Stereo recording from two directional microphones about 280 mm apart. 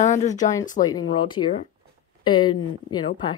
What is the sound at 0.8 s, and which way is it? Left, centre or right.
Speech, centre.